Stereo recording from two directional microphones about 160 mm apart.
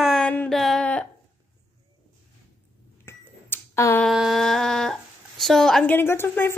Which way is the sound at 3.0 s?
15° left (ahead or behind).